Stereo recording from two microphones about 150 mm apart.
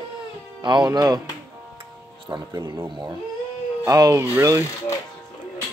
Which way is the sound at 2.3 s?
25° right (ahead or behind).